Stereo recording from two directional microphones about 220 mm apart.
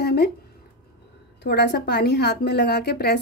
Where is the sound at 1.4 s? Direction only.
50° left (ahead or behind).